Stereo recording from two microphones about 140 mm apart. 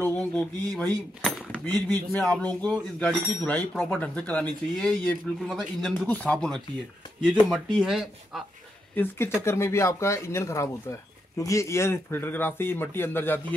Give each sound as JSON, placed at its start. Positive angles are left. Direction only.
{"t": 0.0, "sound": "speech", "side_deg": 5}
{"t": 1.7, "sound": "speech", "side_deg": -25}
{"t": 2.1, "sound": "speech", "side_deg": 10}
{"t": 8.9, "sound": "speech", "side_deg": 15}